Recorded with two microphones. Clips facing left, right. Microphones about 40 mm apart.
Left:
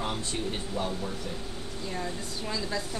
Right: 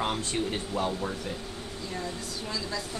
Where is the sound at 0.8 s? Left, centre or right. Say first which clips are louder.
Right 3 dB; right.